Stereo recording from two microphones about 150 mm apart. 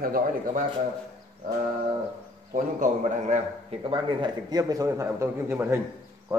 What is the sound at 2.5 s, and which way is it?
Speech, 55° right (ahead or behind).